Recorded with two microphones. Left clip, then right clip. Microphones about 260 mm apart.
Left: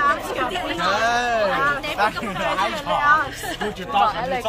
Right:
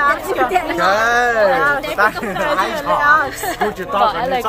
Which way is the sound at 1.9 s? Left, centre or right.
Centre.